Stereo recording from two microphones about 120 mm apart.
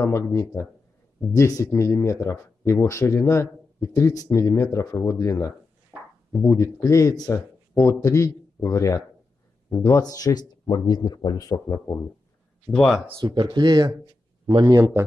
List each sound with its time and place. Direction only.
0.0 s speech: 20° left (ahead or behind)
12.7 s speech: centre (ahead or behind)
13.2 s speech: 40° right (ahead or behind)
14.7 s a man's voice: 20° right (ahead or behind)